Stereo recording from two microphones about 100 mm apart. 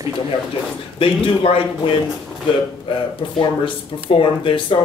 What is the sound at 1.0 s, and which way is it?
Speech, 65° left (ahead or behind).